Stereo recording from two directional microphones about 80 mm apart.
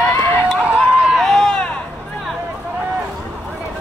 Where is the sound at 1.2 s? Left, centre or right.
Centre.